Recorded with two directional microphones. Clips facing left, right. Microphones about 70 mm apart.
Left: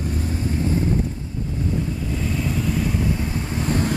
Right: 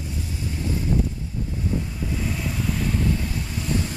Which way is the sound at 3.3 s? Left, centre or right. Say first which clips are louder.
Left 3 dB; left.